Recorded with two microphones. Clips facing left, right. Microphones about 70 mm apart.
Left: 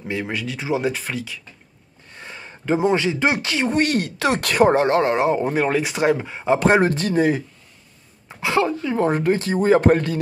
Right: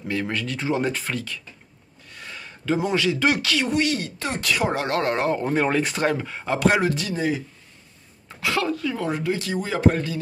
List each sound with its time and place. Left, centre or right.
0.1 s speech: centre
2.0 s speech: left
3.8 s speech: left
4.8 s speech: left
6.6 s speech: left
8.3 s speech: left